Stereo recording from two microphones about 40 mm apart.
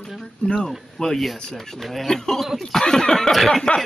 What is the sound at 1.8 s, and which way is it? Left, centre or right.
Speech, centre.